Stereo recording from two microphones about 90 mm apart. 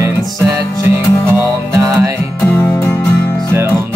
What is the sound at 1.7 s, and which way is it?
Music, 35° right (ahead or behind).